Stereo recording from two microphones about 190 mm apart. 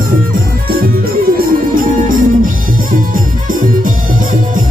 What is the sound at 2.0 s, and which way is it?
Music, 45° right (ahead or behind).